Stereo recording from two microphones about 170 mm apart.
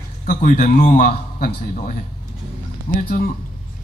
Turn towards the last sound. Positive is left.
turn(degrees=55)  # may be behind; listen again after turning